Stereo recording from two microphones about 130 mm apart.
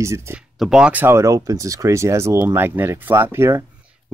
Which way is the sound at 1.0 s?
20° right (ahead or behind).